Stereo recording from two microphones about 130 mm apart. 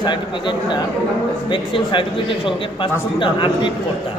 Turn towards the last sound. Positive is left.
turn(degrees=40)  # may be behind; listen again after turning